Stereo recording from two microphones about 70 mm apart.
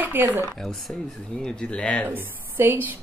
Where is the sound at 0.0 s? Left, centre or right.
Right.